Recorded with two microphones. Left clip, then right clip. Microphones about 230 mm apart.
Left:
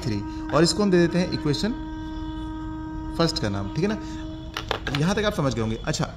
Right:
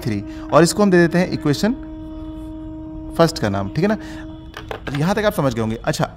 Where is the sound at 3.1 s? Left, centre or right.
Right.